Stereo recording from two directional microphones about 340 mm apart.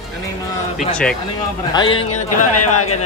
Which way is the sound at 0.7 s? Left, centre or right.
Centre.